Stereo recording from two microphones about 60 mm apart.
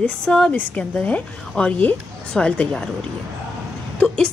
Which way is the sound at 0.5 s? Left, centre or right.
Left.